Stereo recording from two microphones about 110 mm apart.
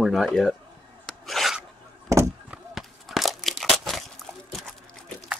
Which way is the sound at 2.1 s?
25° right (ahead or behind).